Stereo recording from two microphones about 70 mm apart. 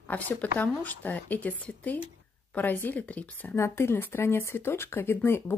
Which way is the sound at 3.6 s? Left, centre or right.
Left.